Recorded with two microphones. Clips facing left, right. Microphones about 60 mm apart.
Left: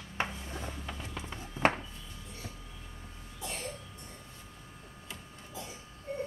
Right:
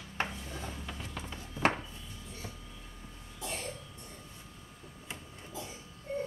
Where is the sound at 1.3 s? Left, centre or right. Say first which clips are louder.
Left 1 dB; left.